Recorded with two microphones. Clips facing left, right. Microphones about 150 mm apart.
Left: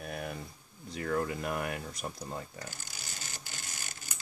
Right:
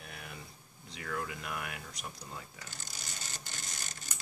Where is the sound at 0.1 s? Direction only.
50° left (ahead or behind).